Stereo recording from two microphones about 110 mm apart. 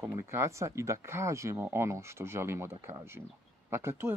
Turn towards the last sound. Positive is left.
turn(degrees=-20)  # may be behind; listen again after turning